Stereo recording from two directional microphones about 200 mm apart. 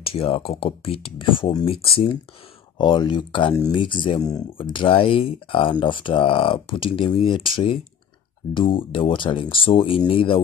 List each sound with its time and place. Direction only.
0.0 s speech: 30° left (ahead or behind)